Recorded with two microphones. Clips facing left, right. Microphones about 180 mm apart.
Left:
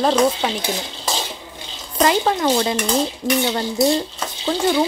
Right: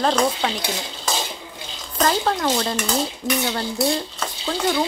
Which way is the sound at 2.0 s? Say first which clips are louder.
Left 3 dB; 10° left (ahead or behind).